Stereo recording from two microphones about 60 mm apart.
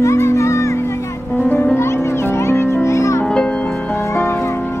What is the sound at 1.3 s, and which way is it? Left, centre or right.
Music, left.